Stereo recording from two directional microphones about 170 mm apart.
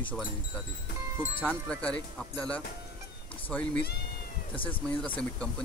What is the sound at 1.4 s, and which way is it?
Speech, 5° left (ahead or behind).